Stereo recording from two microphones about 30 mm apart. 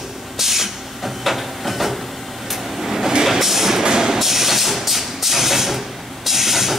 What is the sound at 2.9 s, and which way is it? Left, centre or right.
Train, centre.